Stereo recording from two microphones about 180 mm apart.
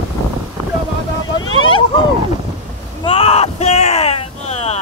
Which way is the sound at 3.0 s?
30° left (ahead or behind).